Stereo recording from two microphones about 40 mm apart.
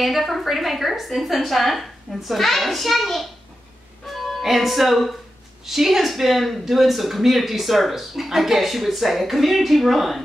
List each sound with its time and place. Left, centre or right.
0.0 s speech: centre